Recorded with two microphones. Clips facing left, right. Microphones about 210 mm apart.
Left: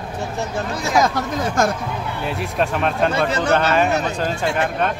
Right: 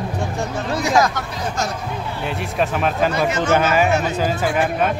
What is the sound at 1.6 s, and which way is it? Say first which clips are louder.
Speech: left 7 dB; 50° left (ahead or behind).